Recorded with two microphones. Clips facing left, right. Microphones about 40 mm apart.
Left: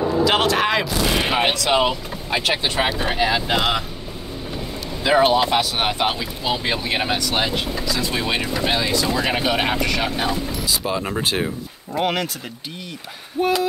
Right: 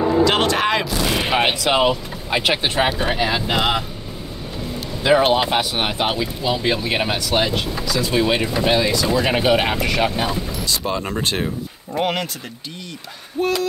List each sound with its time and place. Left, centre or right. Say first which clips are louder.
0.2 s speech: left 2 dB; centre
3.0 s speech: even; centre
5.0 s speech: right 1 dB; centre
5.4 s speech: even; centre
13.4 s speech: left 1 dB; centre